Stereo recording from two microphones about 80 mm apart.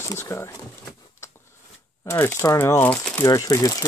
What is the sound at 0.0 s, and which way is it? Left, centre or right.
Speech, left.